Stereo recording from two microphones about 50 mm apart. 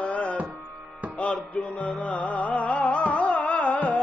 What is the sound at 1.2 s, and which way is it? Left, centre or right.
Music, left.